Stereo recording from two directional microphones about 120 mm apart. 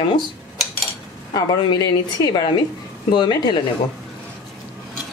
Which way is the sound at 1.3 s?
35° left (ahead or behind).